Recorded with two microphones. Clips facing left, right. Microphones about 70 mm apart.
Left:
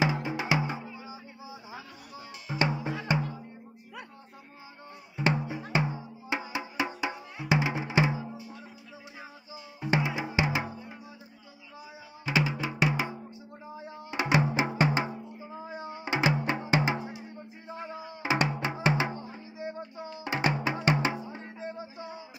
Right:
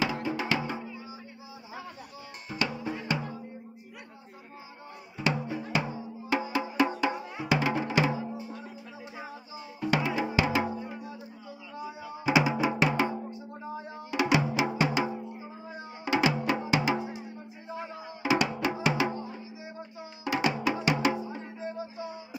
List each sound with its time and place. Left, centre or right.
0.0 s music: centre
2.6 s drum: left
5.1 s music: left
9.8 s music: left
12.3 s drum: centre
12.7 s music: centre
14.1 s music: left
18.2 s drum: left
18.8 s music: left
20.2 s music: left